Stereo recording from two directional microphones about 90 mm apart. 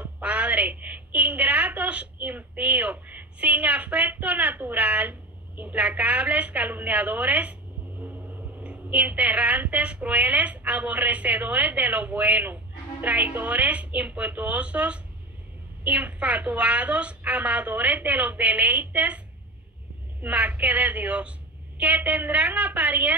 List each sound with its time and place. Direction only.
0.0 s a sound: 15° right (ahead or behind)
5.6 s a woman's voice: 15° right (ahead or behind)
8.6 s a woman's voice: 15° right (ahead or behind)